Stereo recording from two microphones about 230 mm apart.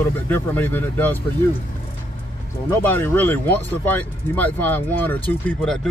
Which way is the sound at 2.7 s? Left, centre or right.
Centre.